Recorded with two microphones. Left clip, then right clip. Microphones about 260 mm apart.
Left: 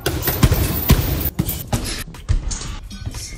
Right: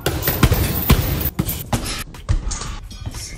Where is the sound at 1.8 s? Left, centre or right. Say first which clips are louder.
Right 1 dB; left.